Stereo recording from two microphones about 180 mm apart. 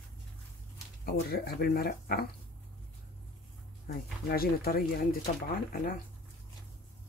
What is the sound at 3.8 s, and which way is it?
Speech, 55° left (ahead or behind).